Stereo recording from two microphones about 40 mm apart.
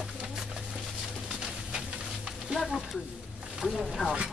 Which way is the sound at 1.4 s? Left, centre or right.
Right.